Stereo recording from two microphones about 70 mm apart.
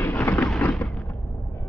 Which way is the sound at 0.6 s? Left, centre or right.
Left.